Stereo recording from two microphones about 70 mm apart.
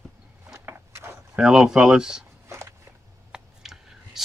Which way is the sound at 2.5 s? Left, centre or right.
Right.